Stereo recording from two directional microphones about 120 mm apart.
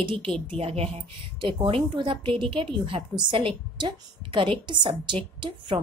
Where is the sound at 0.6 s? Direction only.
60° right (ahead or behind).